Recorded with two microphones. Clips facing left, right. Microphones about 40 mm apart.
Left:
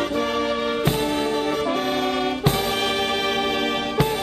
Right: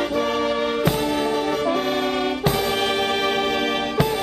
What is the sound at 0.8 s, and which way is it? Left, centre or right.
Music, left.